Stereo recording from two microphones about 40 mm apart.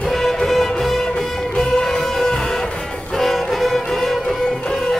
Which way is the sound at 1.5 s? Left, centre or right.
Centre.